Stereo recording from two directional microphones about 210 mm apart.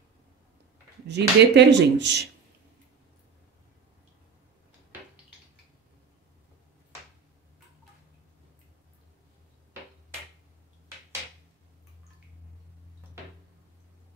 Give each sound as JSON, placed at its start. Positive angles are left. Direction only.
{"t": 1.0, "sound": "speech", "side_deg": -55}